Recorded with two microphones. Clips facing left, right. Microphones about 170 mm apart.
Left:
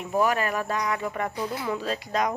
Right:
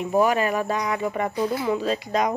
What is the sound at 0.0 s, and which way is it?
Speech, 20° right (ahead or behind).